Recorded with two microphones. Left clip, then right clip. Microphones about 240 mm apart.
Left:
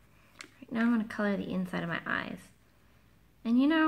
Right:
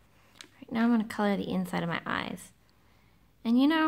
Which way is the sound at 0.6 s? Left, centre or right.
Right.